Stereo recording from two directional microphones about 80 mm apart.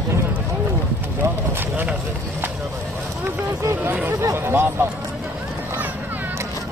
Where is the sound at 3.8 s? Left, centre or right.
Right.